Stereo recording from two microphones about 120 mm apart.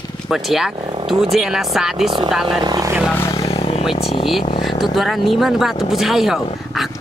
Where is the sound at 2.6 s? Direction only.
30° right (ahead or behind).